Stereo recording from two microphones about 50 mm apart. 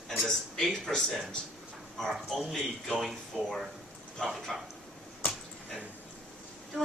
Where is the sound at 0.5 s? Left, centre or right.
Centre.